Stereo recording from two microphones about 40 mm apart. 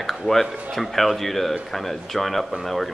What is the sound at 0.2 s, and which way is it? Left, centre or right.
A man's voice, centre.